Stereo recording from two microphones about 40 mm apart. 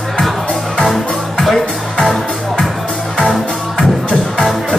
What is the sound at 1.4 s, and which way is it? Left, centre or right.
Music, centre.